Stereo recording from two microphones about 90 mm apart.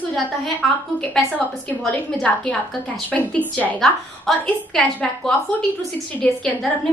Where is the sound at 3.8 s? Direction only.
5° left (ahead or behind).